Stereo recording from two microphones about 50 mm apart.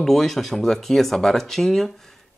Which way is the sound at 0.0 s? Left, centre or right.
Centre.